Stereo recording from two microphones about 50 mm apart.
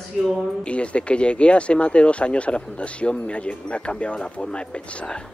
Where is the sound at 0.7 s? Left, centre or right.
Left.